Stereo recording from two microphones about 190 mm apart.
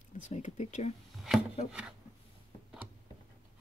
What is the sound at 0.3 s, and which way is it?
Speech, 40° left (ahead or behind).